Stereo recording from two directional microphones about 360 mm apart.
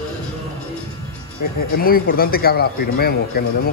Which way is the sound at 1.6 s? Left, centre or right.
Left.